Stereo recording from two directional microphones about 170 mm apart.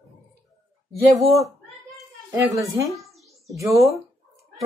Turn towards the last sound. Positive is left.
turn(degrees=-20)  # may be behind; listen again after turning